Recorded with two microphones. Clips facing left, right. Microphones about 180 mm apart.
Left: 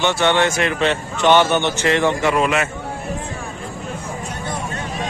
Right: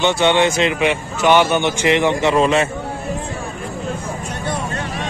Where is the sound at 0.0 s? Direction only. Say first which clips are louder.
Right 2 dB; 15° right (ahead or behind).